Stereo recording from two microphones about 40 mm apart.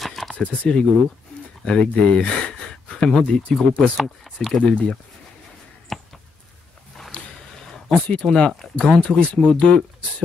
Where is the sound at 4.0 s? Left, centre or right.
Centre.